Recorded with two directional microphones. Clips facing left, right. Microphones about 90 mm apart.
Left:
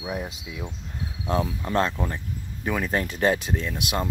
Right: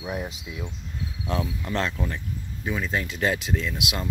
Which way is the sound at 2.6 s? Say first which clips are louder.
Left 2 dB; 50° left (ahead or behind).